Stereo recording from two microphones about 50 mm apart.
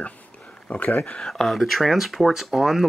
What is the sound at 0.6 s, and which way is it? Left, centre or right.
Speech, left.